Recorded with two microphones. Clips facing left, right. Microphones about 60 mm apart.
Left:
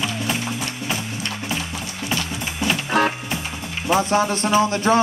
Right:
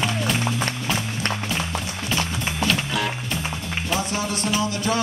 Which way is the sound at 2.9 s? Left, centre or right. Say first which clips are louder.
Left 6 dB; left.